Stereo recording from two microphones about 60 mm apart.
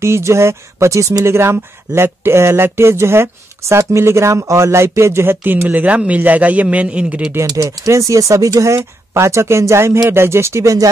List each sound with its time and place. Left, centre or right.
0.0 s speech: right
1.2 s speech: right; by 7.3 s centre
7.4 s speech: right